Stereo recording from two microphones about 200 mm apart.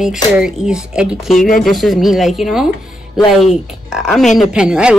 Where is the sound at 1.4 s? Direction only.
45° left (ahead or behind).